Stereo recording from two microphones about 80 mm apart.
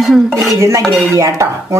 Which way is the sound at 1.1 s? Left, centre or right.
Right.